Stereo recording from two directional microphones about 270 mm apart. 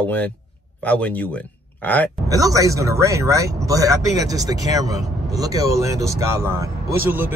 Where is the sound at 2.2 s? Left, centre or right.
Centre.